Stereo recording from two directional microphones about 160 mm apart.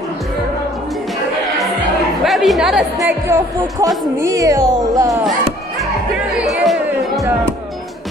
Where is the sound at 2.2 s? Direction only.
Centre (ahead or behind).